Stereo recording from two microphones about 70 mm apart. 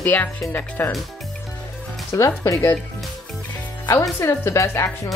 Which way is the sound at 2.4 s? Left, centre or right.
Left.